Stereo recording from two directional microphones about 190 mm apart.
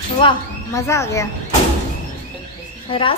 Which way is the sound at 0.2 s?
25° left (ahead or behind).